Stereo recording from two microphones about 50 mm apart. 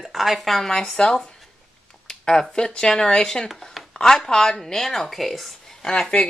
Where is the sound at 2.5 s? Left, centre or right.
Centre.